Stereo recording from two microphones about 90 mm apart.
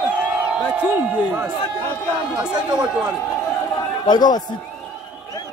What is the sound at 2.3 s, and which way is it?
Speech, 50° right (ahead or behind).